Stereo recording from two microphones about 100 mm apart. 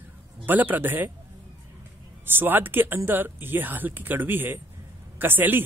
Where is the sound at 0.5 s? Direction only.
20° right (ahead or behind).